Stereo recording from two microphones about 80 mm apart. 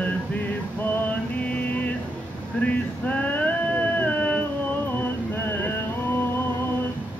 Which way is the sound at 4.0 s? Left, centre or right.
Centre.